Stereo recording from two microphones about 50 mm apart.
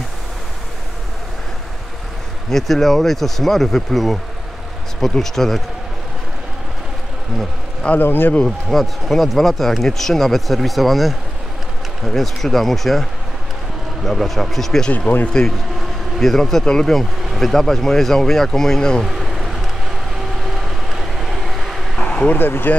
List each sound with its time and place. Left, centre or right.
2.5 s speech: centre
8.0 s speech: left
8.5 s speech: centre
14.0 s speech: centre
14.9 s speech: left
15.2 s speech: centre
19.0 s vehicle: centre
22.0 s a sound: left
22.4 s speech: left